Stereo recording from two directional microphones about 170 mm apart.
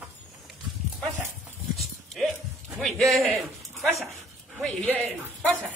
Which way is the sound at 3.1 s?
Centre (ahead or behind).